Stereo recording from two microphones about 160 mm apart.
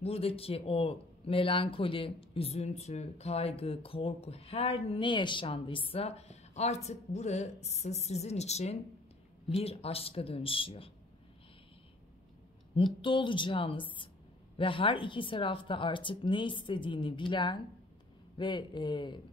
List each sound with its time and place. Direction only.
0.0 s speech: 40° left (ahead or behind)
12.7 s speech: 30° left (ahead or behind)